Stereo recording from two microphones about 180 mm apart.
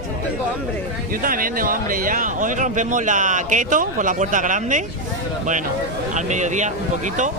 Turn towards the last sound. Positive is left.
turn(degrees=-40)  # may be behind; listen again after turning